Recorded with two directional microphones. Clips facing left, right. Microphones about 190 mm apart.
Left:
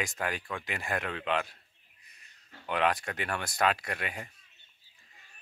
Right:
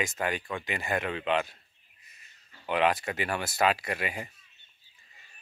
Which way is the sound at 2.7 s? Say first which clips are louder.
Right 3 dB; 5° right (ahead or behind).